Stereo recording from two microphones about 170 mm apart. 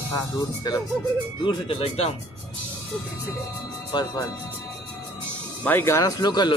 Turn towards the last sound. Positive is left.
turn(degrees=25)  # may be behind; listen again after turning